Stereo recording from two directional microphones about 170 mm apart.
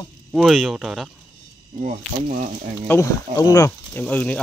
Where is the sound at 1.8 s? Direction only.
45° right (ahead or behind).